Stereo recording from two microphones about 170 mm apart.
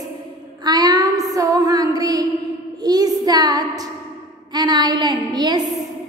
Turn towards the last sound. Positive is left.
turn(degrees=-25)  # may be behind; listen again after turning